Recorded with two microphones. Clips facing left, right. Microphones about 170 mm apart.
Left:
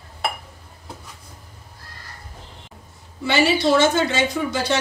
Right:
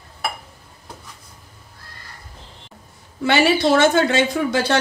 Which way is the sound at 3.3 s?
55° right (ahead or behind).